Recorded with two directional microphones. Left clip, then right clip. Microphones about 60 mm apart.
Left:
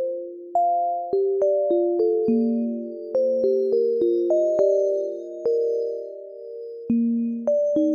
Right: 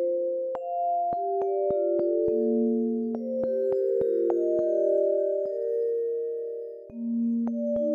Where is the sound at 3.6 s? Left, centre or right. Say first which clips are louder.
Left 4 dB; right.